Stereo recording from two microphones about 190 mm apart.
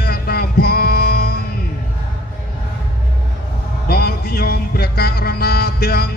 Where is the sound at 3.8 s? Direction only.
55° left (ahead or behind).